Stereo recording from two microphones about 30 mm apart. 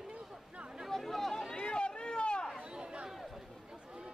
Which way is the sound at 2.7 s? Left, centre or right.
Right.